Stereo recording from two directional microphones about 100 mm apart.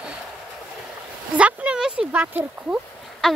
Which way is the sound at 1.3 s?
15° right (ahead or behind).